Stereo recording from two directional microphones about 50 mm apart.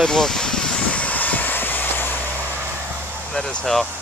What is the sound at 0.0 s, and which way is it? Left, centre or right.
Vehicle, centre.